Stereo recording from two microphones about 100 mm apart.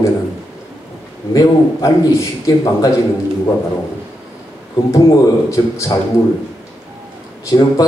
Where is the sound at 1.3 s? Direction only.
35° left (ahead or behind).